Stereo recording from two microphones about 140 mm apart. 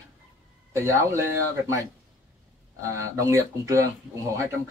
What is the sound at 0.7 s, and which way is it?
Speech, 20° right (ahead or behind).